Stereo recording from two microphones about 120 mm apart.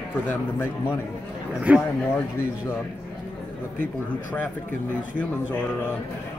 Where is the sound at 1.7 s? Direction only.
10° right (ahead or behind).